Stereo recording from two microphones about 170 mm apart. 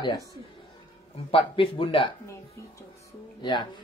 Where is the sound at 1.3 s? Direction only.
30° left (ahead or behind).